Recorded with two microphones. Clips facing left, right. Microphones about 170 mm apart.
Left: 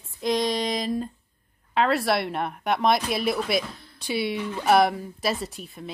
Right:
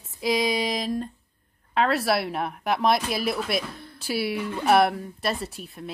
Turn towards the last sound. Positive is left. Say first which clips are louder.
# even
turn(degrees=0)  # may be behind; listen again after turning